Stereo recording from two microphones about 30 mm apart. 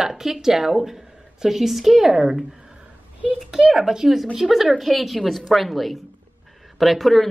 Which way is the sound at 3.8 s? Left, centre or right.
Centre.